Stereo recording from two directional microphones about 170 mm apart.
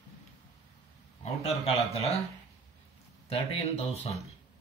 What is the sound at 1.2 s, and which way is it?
Speech, 40° left (ahead or behind).